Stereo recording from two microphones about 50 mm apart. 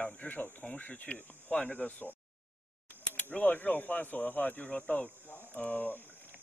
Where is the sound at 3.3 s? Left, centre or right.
Left.